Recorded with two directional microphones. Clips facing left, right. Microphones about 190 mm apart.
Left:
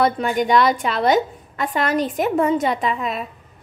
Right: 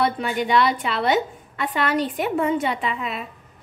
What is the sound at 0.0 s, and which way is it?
A woman's voice, 45° left (ahead or behind).